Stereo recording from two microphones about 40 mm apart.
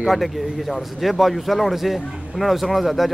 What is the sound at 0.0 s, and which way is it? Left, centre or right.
A man's voice, centre.